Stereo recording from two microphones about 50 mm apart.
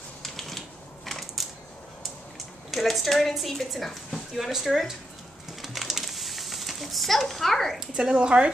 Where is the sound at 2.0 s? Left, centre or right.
Centre.